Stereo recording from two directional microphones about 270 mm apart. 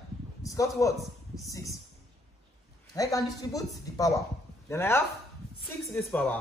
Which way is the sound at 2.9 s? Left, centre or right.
Centre.